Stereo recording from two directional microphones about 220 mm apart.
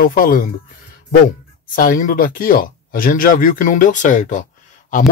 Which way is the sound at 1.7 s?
40° left (ahead or behind).